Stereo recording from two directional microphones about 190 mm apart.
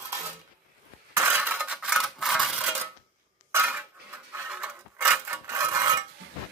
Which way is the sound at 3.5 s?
10° right (ahead or behind).